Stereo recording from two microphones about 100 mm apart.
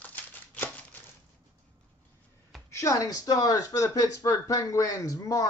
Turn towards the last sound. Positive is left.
turn(degrees=35)  # may be behind; listen again after turning